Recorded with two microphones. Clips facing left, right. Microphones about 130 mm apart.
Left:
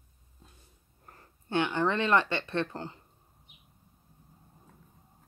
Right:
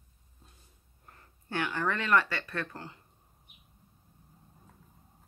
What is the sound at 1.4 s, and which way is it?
Speech, 25° left (ahead or behind).